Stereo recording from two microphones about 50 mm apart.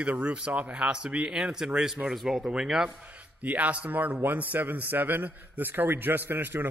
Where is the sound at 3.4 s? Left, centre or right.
Right.